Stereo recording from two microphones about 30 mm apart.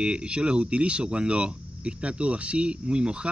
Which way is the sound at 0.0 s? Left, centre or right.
Right.